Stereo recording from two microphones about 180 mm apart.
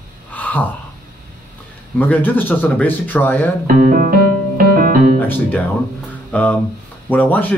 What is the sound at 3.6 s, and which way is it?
Speech, 50° right (ahead or behind).